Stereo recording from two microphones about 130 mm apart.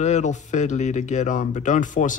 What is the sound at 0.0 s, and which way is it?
Speech, 65° left (ahead or behind).